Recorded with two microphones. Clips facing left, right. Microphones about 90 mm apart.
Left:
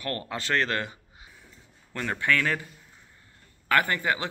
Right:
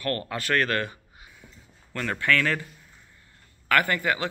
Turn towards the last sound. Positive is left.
turn(degrees=20)  # may be behind; listen again after turning